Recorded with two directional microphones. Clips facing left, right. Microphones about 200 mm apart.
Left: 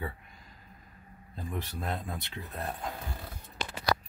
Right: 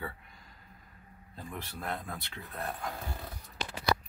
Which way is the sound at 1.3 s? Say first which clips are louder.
Left 5 dB; 20° left (ahead or behind).